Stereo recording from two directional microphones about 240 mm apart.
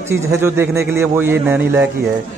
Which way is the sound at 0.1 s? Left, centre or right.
Centre.